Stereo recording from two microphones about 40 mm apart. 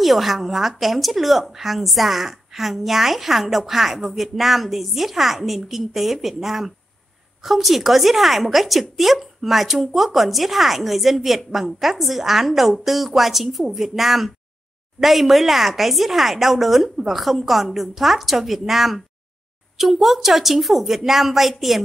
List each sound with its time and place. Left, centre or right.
0.0 s a woman's voice: centre